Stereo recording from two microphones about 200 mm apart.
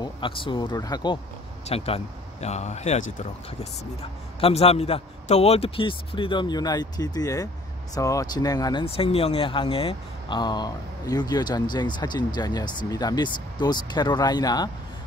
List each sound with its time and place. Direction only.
0.0 s speech: 25° left (ahead or behind)
4.4 s speech: 30° left (ahead or behind)